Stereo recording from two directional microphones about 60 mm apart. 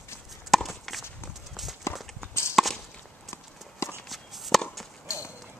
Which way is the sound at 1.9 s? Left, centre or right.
Left.